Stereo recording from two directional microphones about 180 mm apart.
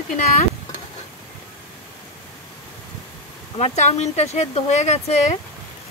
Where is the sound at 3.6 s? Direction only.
40° left (ahead or behind).